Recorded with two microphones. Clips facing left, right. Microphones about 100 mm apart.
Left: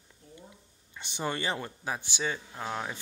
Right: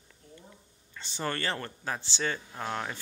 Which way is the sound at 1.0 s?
15° left (ahead or behind).